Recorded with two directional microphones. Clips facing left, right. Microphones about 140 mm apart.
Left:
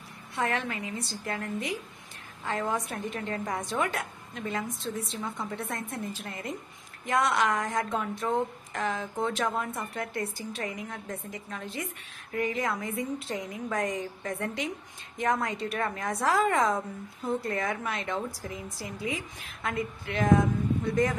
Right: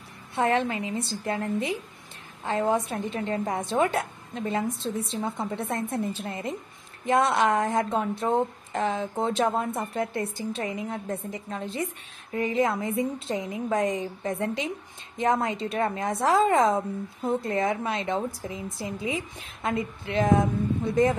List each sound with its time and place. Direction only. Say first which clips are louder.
0.4 s speech: right 6 dB; 25° right (ahead or behind)